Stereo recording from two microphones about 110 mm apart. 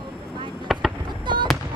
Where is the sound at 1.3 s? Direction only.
45° right (ahead or behind).